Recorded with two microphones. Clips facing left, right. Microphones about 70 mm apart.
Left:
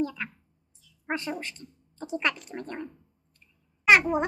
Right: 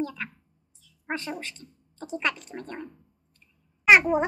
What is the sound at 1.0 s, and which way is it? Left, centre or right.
A woman's voice, centre.